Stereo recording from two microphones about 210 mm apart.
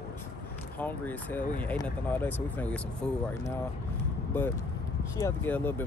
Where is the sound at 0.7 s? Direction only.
10° left (ahead or behind).